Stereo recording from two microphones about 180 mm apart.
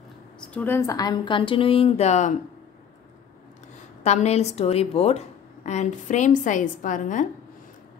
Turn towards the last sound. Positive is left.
turn(degrees=45)  # may be behind; listen again after turning